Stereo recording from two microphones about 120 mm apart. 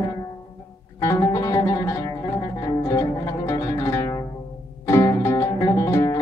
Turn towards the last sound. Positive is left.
turn(degrees=25)  # may be behind; listen again after turning